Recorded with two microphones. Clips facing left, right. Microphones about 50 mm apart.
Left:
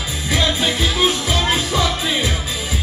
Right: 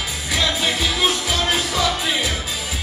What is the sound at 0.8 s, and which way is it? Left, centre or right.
Music, left.